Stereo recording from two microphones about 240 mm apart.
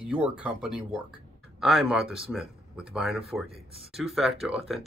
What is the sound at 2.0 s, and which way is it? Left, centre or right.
Speech, right.